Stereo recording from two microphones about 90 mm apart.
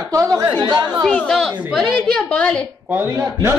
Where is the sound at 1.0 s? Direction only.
5° left (ahead or behind).